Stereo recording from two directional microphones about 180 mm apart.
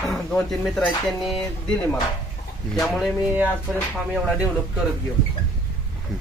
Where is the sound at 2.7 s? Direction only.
Centre (ahead or behind).